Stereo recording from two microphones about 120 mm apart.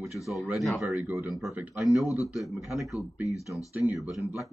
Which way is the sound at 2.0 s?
25° left (ahead or behind).